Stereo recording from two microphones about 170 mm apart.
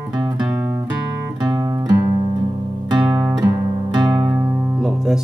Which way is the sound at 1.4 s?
20° right (ahead or behind).